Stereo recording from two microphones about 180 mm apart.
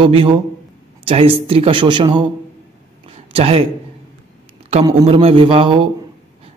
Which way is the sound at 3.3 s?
30° right (ahead or behind).